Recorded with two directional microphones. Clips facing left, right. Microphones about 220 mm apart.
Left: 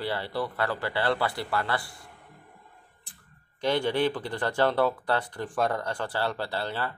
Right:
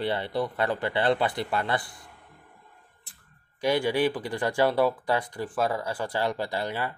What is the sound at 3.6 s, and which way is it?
Speech, 10° right (ahead or behind).